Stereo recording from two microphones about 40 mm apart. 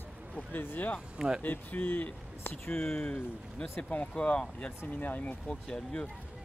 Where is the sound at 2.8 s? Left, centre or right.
Centre.